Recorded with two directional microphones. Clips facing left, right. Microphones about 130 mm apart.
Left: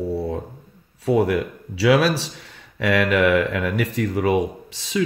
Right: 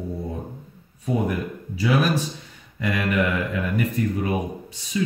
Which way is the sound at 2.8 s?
80° left.